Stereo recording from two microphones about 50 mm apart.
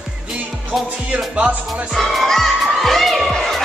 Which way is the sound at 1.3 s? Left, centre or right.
Right.